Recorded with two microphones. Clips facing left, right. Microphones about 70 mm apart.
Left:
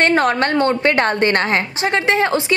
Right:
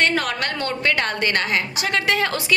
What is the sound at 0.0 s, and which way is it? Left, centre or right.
A woman's voice, left.